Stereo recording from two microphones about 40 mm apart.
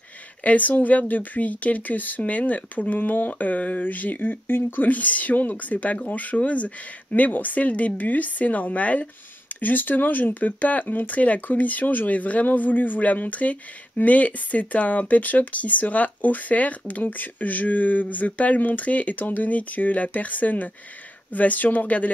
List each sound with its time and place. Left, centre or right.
0.4 s speech: left
4.8 s speech: left
9.6 s speech: left